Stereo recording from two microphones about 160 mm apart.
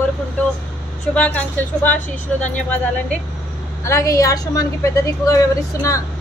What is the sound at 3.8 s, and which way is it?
A woman's voice, 20° left (ahead or behind).